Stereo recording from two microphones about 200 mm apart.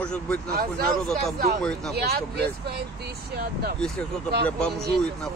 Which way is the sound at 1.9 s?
55° right (ahead or behind).